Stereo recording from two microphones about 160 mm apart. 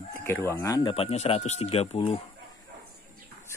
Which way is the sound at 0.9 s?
40° left (ahead or behind).